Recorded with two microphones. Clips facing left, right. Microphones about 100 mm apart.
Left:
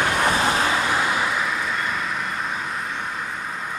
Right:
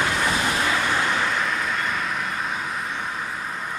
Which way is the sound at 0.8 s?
15° left (ahead or behind).